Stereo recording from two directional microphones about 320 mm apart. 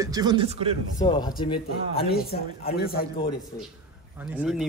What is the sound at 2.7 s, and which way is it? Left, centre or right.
Speech, left.